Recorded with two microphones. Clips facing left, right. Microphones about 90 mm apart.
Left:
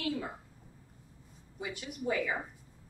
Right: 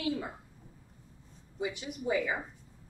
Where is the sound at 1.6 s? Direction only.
20° right (ahead or behind).